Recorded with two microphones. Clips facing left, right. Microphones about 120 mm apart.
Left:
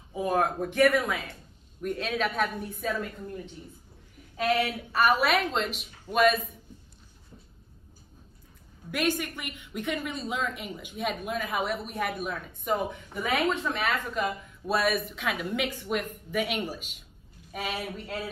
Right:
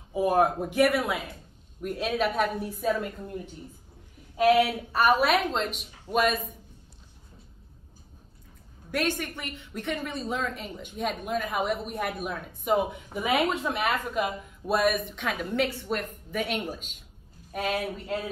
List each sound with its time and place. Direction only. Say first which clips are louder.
0.1 s a woman's voice: right 4 dB; 10° right (ahead or behind)
4.4 s speech: right 6 dB; 15° right (ahead or behind)
4.9 s a woman's voice: right 1 dB; centre (ahead or behind)
8.9 s a woman's voice: even; 10° left (ahead or behind)